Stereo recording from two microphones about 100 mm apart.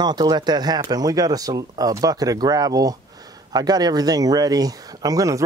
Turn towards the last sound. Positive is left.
turn(degrees=-35)  # may be behind; listen again after turning